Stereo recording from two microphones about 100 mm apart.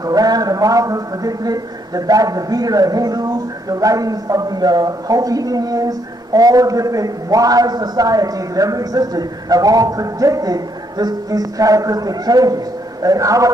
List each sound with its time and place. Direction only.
0.0 s a man's voice: 40° right (ahead or behind)